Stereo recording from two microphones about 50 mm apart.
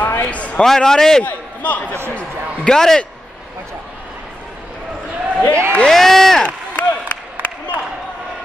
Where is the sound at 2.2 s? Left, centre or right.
Centre.